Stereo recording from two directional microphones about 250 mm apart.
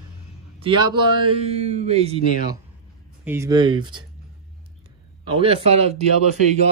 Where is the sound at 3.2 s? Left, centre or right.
Centre.